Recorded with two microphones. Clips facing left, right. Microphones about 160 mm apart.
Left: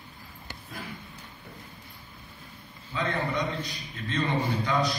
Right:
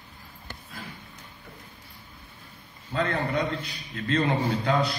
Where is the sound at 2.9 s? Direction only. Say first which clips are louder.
Right 4 dB; 60° right (ahead or behind).